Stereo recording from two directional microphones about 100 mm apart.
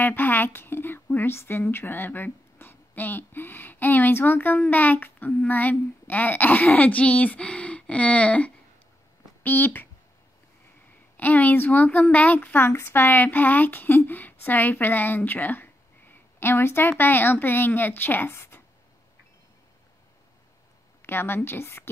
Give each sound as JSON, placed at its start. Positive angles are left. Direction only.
{"t": 0.0, "sound": "a woman's voice", "side_deg": 20}
{"t": 11.1, "sound": "a woman's voice", "side_deg": 15}
{"t": 21.0, "sound": "a woman's voice", "side_deg": 20}